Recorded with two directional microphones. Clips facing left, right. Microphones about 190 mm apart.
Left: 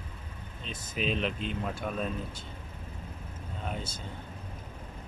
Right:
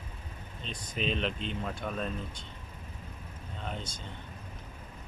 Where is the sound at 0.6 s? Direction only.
5° left (ahead or behind).